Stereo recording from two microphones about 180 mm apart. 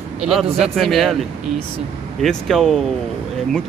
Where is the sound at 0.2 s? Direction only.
Centre (ahead or behind).